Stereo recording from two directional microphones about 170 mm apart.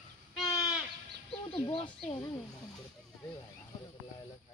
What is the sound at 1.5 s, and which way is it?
Fowl, 30° left (ahead or behind).